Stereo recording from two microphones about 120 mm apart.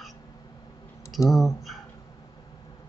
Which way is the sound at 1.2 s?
Centre (ahead or behind).